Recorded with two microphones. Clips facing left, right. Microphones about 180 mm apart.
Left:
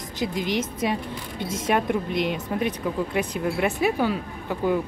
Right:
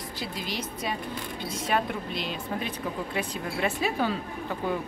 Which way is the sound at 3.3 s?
15° left (ahead or behind).